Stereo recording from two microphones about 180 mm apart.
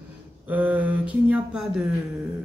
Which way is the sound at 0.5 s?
10° right (ahead or behind).